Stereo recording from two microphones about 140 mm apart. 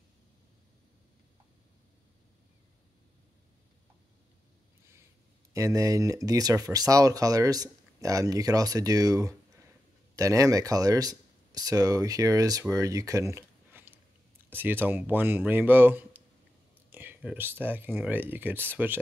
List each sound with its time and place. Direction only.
5.5 s speech: 25° right (ahead or behind)